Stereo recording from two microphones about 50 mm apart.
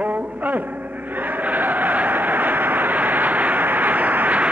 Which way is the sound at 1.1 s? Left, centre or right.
Right.